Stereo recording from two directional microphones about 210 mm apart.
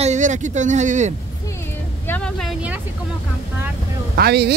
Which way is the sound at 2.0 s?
5° left (ahead or behind).